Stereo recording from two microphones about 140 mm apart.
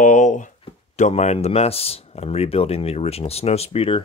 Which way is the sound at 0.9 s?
55° left (ahead or behind).